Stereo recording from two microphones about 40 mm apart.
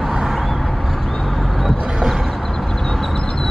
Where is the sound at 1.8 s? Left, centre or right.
Centre.